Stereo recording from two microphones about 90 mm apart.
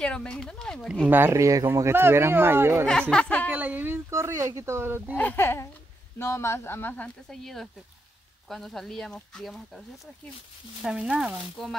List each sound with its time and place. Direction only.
0.0 s speech: 10° left (ahead or behind)
1.0 s speech: 20° right (ahead or behind)
1.3 s speech: 35° right (ahead or behind)
2.9 s speech: 10° left (ahead or behind)
3.4 s speech: 20° right (ahead or behind)
4.1 s speech: 35° right (ahead or behind)
5.1 s speech: 20° left (ahead or behind)
7.2 s speech: 5° left (ahead or behind)
10.8 s speech: 10° right (ahead or behind)
11.6 s speech: 5° left (ahead or behind)